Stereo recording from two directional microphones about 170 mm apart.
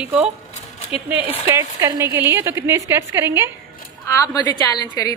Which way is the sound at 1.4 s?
20° right (ahead or behind).